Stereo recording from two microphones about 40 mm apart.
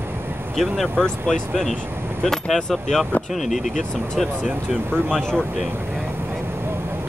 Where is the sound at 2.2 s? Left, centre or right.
Centre.